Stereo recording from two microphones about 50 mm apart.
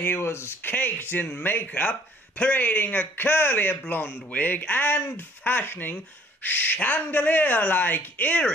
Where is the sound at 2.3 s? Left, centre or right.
Left.